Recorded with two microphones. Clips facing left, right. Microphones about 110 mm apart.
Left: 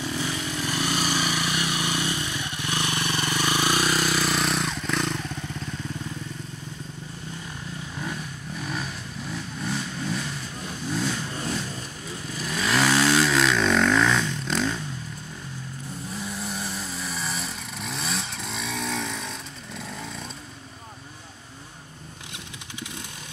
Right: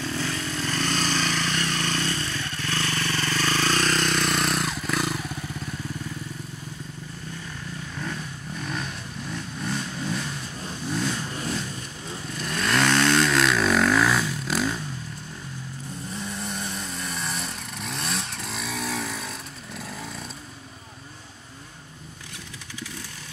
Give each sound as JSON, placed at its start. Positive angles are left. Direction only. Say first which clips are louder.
{"t": 0.0, "sound": "vehicle", "louder": "even", "side_deg": 15}
{"t": 8.0, "sound": "vehicle", "louder": "even", "side_deg": 5}
{"t": 12.3, "sound": "vehicle", "louder": "even", "side_deg": 0}
{"t": 16.2, "sound": "vehicle", "louder": "even", "side_deg": 0}